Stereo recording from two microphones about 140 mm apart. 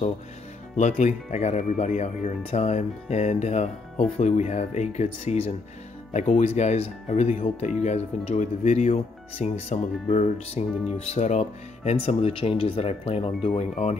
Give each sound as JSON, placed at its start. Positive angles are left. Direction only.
{"t": 0.7, "sound": "speech", "side_deg": 55}